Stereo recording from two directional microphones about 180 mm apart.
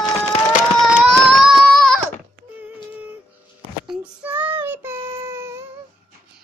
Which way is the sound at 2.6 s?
10° right (ahead or behind).